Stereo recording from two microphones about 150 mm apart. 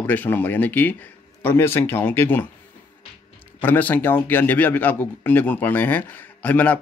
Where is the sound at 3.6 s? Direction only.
10° left (ahead or behind).